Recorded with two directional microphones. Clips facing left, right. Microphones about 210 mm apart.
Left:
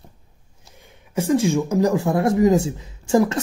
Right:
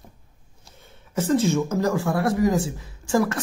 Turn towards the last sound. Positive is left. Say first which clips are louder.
# left 4 dB
turn(degrees=20)  # may be behind; listen again after turning